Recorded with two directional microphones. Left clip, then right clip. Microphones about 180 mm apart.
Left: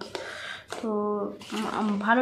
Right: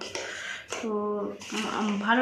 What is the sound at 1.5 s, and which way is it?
Speech, 10° left (ahead or behind).